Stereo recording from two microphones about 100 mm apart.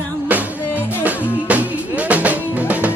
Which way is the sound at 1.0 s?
15° right (ahead or behind).